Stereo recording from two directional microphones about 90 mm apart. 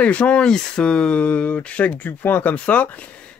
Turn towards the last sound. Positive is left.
turn(degrees=15)  # may be behind; listen again after turning